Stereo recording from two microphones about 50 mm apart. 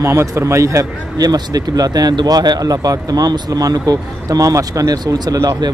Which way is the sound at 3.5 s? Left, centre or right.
Right.